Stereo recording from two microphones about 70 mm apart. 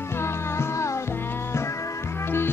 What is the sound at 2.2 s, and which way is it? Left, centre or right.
Music, left.